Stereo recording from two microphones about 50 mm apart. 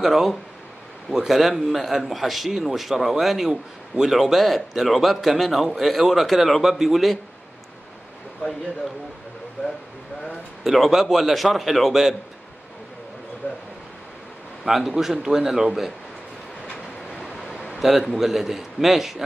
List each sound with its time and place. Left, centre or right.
0.0 s a man's voice: centre
10.6 s a man's voice: centre
13.4 s a sound: left
14.6 s a man's voice: centre
17.7 s a man's voice: centre